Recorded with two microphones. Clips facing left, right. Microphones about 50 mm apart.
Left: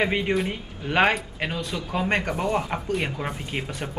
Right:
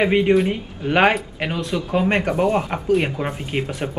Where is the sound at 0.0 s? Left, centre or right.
Centre.